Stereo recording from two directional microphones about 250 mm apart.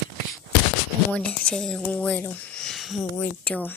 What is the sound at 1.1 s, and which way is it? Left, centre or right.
Speech, centre.